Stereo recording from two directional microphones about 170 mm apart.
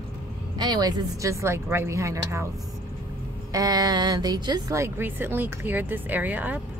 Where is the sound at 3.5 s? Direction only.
20° right (ahead or behind).